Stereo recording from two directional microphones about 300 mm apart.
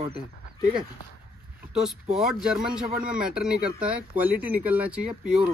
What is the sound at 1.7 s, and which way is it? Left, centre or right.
Speech, centre.